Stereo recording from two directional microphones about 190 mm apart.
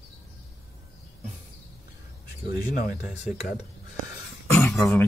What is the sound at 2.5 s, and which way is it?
Speech, 50° left (ahead or behind).